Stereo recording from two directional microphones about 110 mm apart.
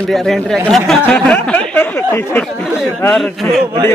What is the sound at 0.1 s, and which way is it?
Speech, 5° left (ahead or behind).